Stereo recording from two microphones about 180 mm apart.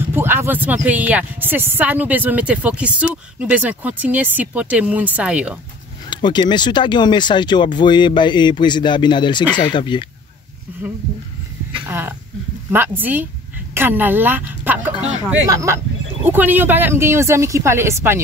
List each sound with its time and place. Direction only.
0.1 s a sound: 10° right (ahead or behind)
0.8 s speech: 10° right (ahead or behind)
6.0 s speech: 25° left (ahead or behind)
11.8 s speech: 10° right (ahead or behind)